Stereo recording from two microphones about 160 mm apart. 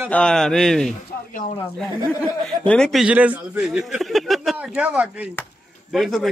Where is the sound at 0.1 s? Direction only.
5° left (ahead or behind).